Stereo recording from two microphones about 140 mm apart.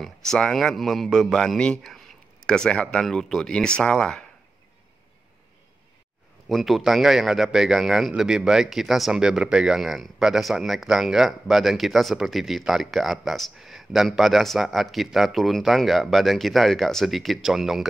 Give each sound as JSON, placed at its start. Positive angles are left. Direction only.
{"t": 0.0, "sound": "speech", "side_deg": 5}
{"t": 6.5, "sound": "speech", "side_deg": 0}